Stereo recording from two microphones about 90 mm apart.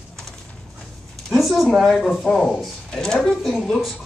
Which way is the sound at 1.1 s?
Centre (ahead or behind).